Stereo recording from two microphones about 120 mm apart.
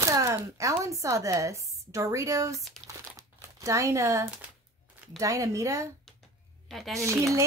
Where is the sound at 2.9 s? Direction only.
25° right (ahead or behind).